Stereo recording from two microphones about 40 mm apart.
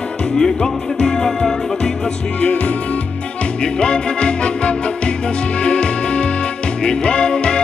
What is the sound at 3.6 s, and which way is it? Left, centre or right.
Music, left.